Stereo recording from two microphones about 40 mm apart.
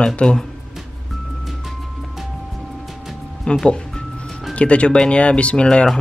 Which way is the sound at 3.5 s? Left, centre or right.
Left.